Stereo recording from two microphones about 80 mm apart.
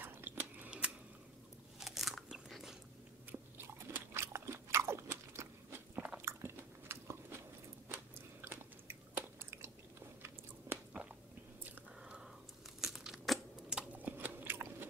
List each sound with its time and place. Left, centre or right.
0.0 s a sound: right
0.7 s a sound: centre
1.8 s crunch: centre
3.3 s crunch: right
6.1 s biting: right
7.9 s chewing: right
10.9 s biting: centre
12.0 s a sound: centre
12.8 s crumpling: centre
13.7 s chewing: right